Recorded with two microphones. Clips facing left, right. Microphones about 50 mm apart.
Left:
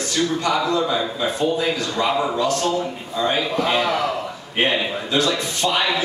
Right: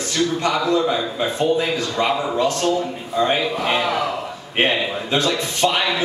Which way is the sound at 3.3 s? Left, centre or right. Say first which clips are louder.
Even; centre.